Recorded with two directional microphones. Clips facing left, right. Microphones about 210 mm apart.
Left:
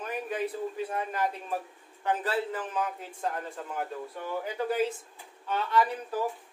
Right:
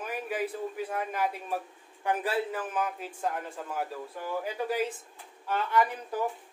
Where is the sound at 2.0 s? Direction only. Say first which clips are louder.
Even; 10° right (ahead or behind).